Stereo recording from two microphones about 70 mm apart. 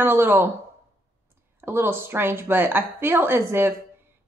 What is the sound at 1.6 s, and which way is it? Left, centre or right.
A woman's voice, right.